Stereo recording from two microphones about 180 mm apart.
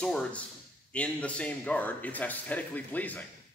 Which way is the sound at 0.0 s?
5° left (ahead or behind).